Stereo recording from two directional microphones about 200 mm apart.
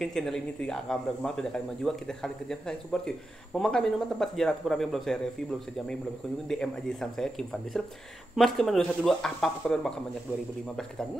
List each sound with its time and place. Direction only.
0.0 s speech: centre (ahead or behind)
6.4 s speech: centre (ahead or behind)